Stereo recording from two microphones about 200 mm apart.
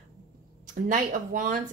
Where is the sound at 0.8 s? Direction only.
40° right (ahead or behind).